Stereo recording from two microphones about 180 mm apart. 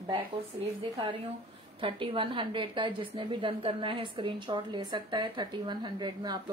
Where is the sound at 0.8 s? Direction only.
30° right (ahead or behind).